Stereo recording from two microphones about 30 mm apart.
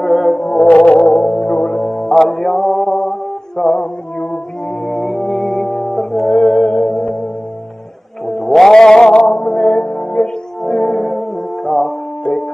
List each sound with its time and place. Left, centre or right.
0.0 s music: centre
2.3 s mantra: centre
3.7 s music: left
4.8 s music: centre
6.3 s music: left
8.3 s music: centre; by 10.3 s left
10.6 s music: centre